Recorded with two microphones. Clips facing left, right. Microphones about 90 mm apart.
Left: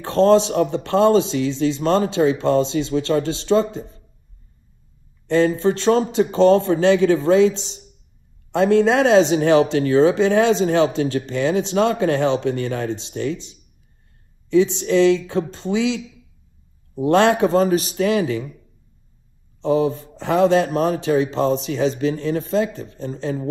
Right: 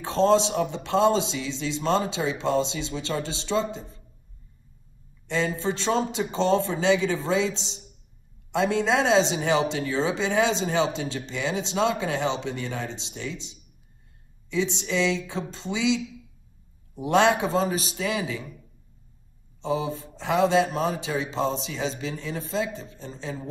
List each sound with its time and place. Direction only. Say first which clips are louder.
0.1 s a man's voice: left 6 dB; 55° left (ahead or behind)
5.3 s a man's voice: left 9 dB; 55° left (ahead or behind)
14.5 s speech: left 10 dB; 55° left (ahead or behind)
17.1 s speech: left 5 dB; 55° left (ahead or behind)
19.6 s speech: left 9 dB; 55° left (ahead or behind)